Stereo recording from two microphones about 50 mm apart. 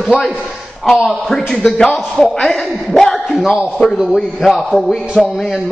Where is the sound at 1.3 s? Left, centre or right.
Centre.